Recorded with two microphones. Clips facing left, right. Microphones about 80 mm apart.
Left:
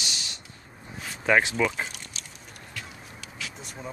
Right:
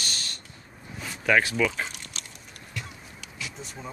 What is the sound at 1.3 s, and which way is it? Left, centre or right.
Speech, left.